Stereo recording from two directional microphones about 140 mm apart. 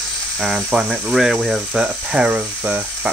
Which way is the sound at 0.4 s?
Centre (ahead or behind).